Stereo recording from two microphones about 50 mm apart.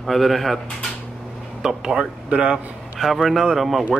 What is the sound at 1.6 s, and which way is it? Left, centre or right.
Speech, centre.